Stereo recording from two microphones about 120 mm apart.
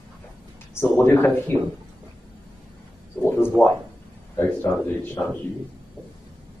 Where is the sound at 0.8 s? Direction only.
20° left (ahead or behind).